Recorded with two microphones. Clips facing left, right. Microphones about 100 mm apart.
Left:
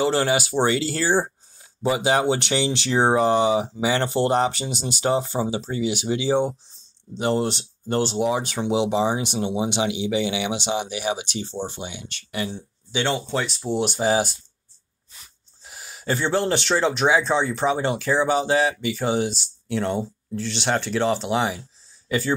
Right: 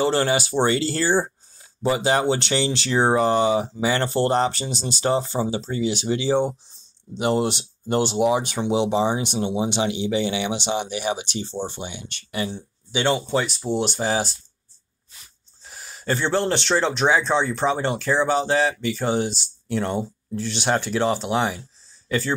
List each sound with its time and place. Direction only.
0.0 s speech: 5° left (ahead or behind)
7.2 s speech: 10° right (ahead or behind)
13.6 s speech: 5° left (ahead or behind)
15.6 s speech: 5° left (ahead or behind)